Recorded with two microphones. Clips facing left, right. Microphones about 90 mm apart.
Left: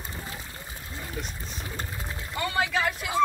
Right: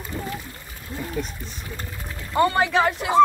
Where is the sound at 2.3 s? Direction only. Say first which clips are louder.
Right 8 dB; 45° right (ahead or behind).